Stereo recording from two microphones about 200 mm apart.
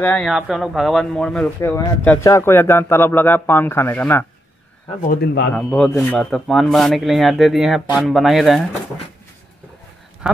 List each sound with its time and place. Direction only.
0.0 s speech: 5° left (ahead or behind)
5.1 s speech: 55° left (ahead or behind)
5.5 s a man's voice: 5° left (ahead or behind)
10.2 s a sound: 5° right (ahead or behind)